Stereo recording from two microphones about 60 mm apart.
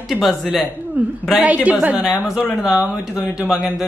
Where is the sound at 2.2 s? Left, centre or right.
Left.